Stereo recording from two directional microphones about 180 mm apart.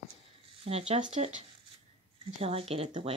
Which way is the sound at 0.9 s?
40° right (ahead or behind).